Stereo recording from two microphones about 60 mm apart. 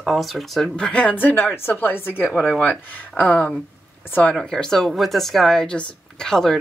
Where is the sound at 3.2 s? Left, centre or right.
Left.